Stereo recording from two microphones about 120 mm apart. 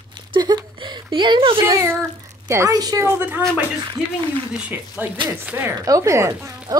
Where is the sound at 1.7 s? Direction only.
25° right (ahead or behind).